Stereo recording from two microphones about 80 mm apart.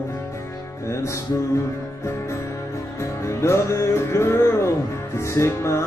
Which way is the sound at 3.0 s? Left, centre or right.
Left.